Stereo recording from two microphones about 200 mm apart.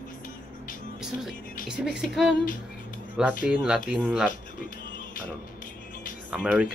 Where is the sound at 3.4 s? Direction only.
5° right (ahead or behind).